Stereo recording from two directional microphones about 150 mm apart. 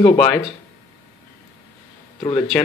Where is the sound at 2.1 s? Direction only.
30° left (ahead or behind).